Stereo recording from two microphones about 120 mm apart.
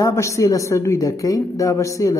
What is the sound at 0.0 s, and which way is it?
A woman's voice, 25° left (ahead or behind).